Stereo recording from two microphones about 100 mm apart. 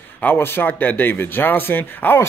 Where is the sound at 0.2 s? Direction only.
20° left (ahead or behind).